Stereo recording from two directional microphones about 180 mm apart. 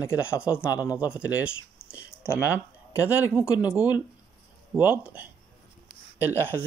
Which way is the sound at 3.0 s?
10° right (ahead or behind).